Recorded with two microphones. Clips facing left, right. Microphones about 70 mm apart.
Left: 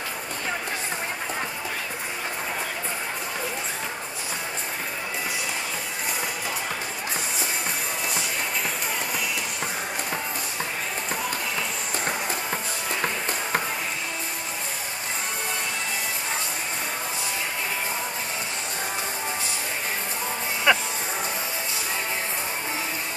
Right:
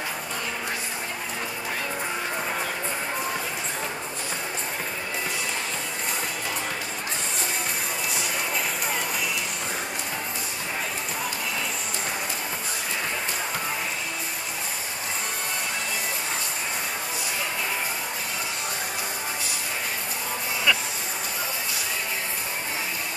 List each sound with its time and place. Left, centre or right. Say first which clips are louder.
20.7 s music: left 4 dB; left